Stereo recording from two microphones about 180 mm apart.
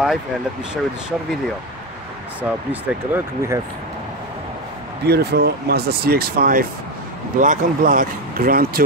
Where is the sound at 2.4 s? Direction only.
10° right (ahead or behind).